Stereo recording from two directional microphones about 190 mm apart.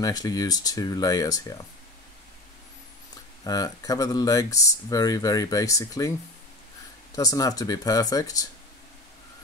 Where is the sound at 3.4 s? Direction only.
20° left (ahead or behind).